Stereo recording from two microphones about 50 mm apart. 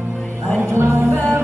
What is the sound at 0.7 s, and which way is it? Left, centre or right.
Music, right.